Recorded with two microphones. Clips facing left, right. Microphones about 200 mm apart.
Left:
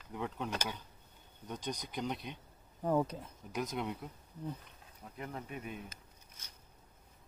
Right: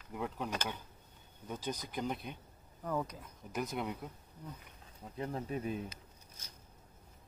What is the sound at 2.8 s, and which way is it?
Speech, 30° left (ahead or behind).